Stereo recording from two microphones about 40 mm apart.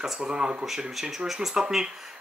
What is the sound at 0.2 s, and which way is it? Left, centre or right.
Speech, right.